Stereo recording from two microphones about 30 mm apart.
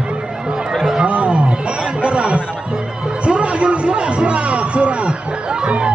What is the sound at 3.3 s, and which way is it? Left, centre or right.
Music, right.